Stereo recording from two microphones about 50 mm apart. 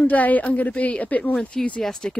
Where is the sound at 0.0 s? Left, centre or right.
Left.